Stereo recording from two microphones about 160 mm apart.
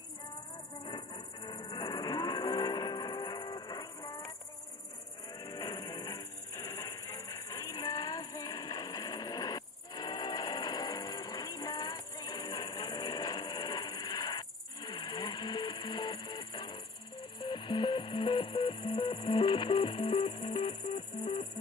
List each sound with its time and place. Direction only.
0.8 s music: 30° left (ahead or behind)
5.4 s music: 20° left (ahead or behind)